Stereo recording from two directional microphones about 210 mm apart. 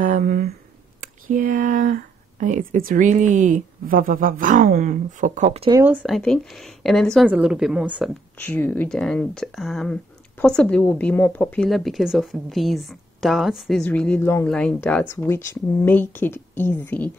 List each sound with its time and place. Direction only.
0.0 s speech: 40° right (ahead or behind)
5.7 s speech: 10° right (ahead or behind)
8.4 s speech: 10° left (ahead or behind)